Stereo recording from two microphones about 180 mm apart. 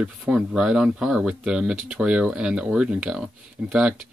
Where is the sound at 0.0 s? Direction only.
5° right (ahead or behind).